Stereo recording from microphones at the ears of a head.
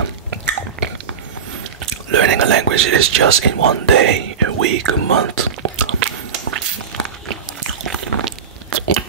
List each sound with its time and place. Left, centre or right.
1.9 s whispering: right
7.2 s biting: right